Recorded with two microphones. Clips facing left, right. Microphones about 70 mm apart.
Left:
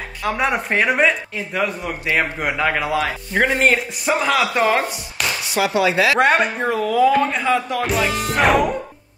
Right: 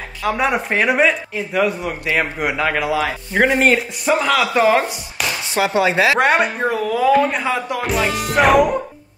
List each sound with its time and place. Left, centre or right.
0.2 s speech: centre
5.5 s chopping: right
6.1 s speech: centre